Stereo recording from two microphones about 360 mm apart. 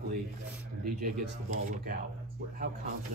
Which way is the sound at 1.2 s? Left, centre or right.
Right.